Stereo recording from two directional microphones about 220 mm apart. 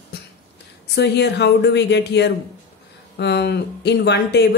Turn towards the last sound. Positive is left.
turn(degrees=50)  # may be behind; listen again after turning